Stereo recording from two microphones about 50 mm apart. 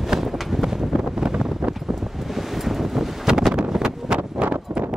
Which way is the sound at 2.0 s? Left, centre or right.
Centre.